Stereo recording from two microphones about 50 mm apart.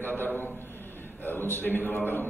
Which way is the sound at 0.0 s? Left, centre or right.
Left.